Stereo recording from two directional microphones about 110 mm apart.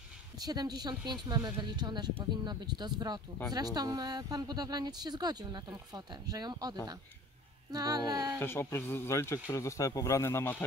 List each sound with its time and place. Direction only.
0.4 s speech: 35° right (ahead or behind)
8.4 s speech: 20° left (ahead or behind)